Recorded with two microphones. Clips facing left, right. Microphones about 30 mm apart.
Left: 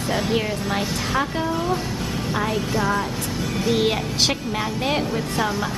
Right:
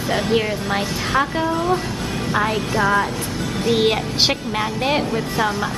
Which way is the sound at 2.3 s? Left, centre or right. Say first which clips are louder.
Right 4 dB; right.